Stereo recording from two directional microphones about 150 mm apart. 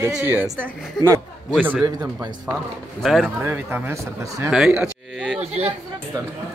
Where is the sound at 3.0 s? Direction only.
Centre (ahead or behind).